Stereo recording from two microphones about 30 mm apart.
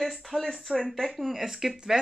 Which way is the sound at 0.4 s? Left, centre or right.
Centre.